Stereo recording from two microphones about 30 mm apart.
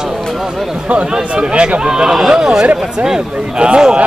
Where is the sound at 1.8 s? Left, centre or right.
Right.